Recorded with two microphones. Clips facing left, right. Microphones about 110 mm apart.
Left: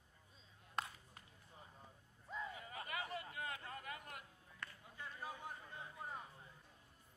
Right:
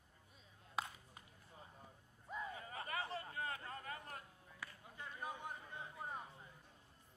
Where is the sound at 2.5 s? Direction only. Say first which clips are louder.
Right 2 dB; 35° right (ahead or behind).